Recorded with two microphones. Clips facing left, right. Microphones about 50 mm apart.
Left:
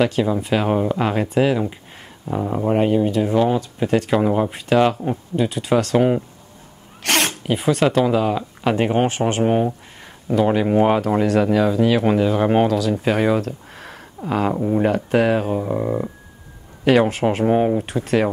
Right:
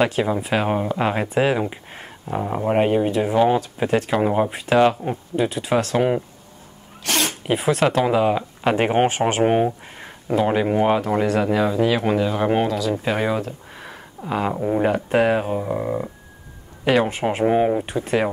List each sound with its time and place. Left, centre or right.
0.0 s speech: right
2.3 s speech: centre
7.0 s speech: left
7.5 s speech: centre
8.0 s speech: centre
8.8 s speech: right
9.5 s a sound: right
10.3 s speech: centre
17.8 s speech: centre